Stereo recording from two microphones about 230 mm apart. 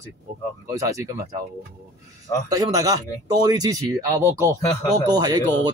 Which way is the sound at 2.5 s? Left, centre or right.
Centre.